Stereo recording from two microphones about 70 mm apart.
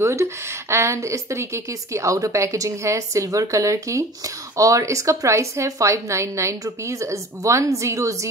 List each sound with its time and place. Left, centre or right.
0.0 s speech: right